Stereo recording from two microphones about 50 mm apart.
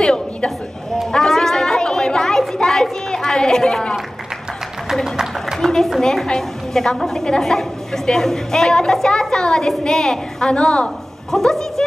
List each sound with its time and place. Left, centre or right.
0.0 s a sound: centre
5.1 s speech: centre
5.6 s a woman's voice: centre
11.3 s a woman's voice: centre